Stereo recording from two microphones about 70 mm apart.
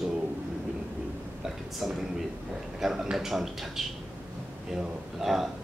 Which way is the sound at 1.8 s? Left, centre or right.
Centre.